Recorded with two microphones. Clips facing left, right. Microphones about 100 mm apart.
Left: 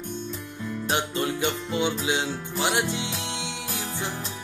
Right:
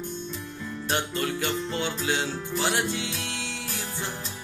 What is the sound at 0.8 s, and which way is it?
Music, 20° left (ahead or behind).